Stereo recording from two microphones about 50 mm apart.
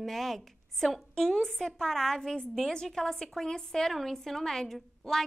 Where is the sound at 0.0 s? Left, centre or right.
Centre.